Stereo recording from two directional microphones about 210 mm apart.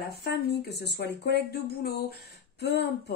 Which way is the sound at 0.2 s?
50° left (ahead or behind).